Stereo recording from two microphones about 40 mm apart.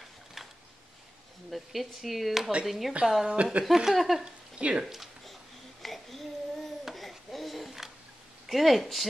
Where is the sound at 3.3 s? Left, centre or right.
Right.